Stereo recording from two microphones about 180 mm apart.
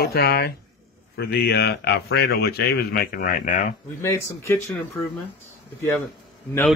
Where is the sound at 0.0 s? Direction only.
60° left (ahead or behind).